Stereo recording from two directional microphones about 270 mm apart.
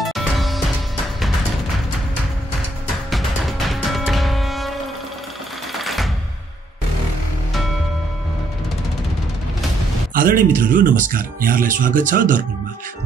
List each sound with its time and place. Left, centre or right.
0.0 s music: centre
3.1 s music: centre
10.1 s a sound: right
10.6 s speech: right